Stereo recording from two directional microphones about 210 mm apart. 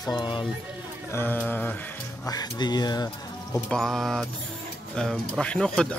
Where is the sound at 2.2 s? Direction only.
20° left (ahead or behind).